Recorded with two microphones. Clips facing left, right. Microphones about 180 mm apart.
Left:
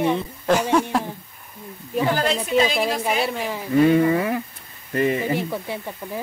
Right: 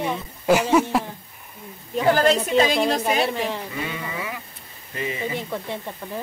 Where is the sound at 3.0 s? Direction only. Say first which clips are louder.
Right 1 dB; centre (ahead or behind).